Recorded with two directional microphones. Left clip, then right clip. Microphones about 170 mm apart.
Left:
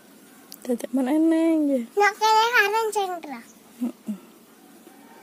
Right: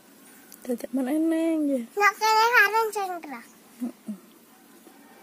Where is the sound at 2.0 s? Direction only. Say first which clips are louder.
Left 2 dB; 15° left (ahead or behind).